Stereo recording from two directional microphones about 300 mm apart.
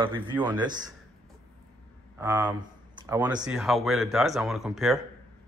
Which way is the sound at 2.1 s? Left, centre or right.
Centre.